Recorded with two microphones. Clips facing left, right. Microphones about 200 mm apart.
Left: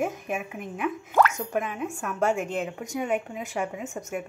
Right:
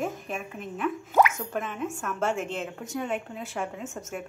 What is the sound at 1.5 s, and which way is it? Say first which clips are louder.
Speech: left 2 dB; 10° left (ahead or behind).